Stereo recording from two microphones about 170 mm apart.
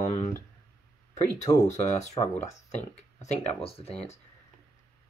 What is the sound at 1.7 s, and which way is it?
Speech, 45° left (ahead or behind).